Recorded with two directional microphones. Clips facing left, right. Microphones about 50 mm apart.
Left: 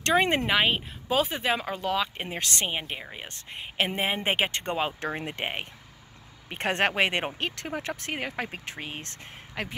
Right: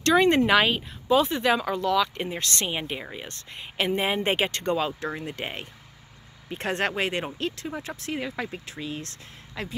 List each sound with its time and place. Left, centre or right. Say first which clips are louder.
0.0 s speech: right 3 dB; left
0.5 s speech: right 3 dB; centre
0.7 s speech: right 4 dB; left
1.6 s speech: right 4 dB; left
4.5 s speech: right 3 dB; left